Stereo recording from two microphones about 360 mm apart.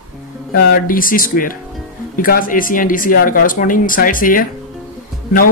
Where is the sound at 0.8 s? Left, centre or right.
Left.